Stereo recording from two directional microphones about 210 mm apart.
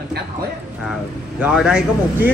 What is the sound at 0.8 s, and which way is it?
Speech, 5° right (ahead or behind).